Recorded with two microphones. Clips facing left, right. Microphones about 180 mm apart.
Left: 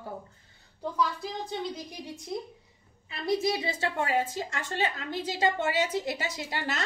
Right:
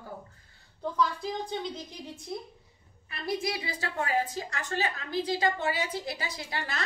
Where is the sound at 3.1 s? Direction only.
25° left (ahead or behind).